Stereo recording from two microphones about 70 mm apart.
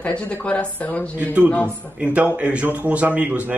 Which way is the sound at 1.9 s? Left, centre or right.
Centre.